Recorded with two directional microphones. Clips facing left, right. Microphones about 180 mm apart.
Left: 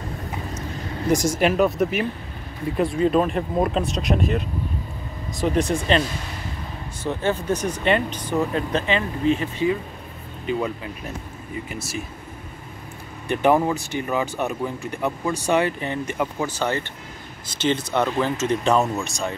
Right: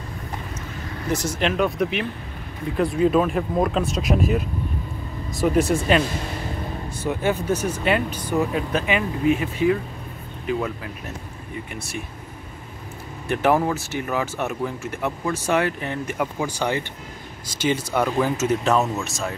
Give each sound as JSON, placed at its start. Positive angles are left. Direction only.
{"t": 1.1, "sound": "speech", "side_deg": 10}
{"t": 13.3, "sound": "speech", "side_deg": 0}